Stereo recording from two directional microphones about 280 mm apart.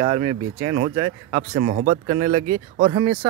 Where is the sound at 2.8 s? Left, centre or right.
Right.